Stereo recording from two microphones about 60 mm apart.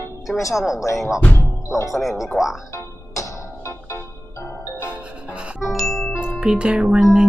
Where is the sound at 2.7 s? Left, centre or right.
Left.